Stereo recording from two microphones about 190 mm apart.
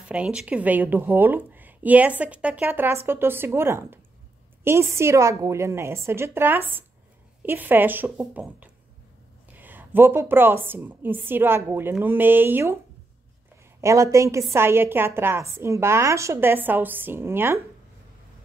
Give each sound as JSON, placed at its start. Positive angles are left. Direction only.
{"t": 0.1, "sound": "speech", "side_deg": -5}
{"t": 13.7, "sound": "speech", "side_deg": -15}